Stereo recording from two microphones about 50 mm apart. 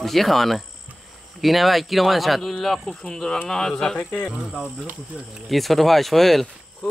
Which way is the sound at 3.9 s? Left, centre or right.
Left.